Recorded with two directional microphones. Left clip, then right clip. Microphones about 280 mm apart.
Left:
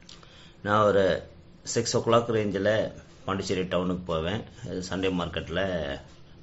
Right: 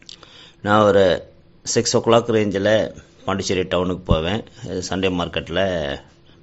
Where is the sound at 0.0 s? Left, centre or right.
Right.